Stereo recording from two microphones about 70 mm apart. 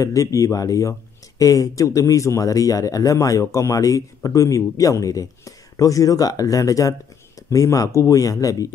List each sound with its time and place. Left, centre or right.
0.0 s a man's voice: left